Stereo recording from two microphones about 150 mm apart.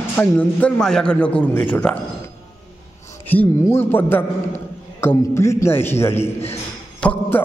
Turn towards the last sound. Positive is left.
turn(degrees=10)  # may be behind; listen again after turning